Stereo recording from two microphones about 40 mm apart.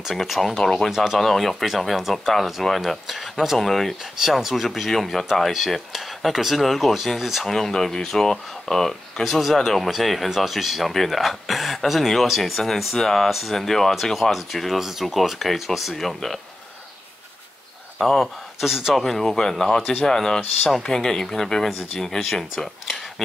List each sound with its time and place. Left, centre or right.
0.1 s speech: centre
4.2 s speech: centre
7.4 s speech: centre
17.9 s speech: centre
19.0 s speech: centre